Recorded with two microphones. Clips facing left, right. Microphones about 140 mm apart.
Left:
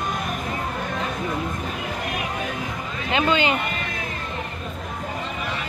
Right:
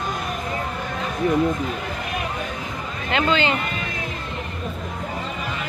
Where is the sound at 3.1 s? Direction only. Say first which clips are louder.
Even; 15° left (ahead or behind).